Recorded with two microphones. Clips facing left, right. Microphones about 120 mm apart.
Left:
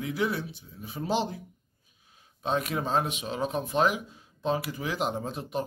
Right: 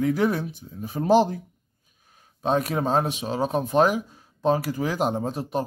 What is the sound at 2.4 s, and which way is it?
Speech, 40° right (ahead or behind).